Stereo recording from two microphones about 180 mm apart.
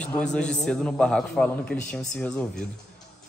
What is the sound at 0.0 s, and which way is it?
A man's voice, 5° left (ahead or behind).